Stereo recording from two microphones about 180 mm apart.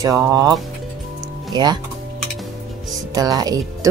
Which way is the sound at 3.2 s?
20° right (ahead or behind).